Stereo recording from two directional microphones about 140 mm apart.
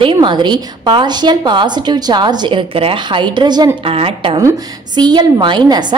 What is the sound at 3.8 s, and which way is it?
A woman's voice, 40° right (ahead or behind).